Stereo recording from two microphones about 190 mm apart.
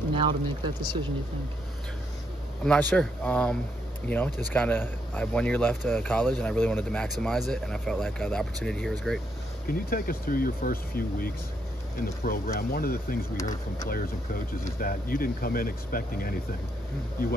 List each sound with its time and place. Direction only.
0.1 s speech: 25° right (ahead or behind)
2.6 s speech: 5° left (ahead or behind)
4.6 s speech: 10° left (ahead or behind)
9.7 s speech: 50° left (ahead or behind)
13.4 s speech: 20° left (ahead or behind)
13.8 s speech: 50° left (ahead or behind)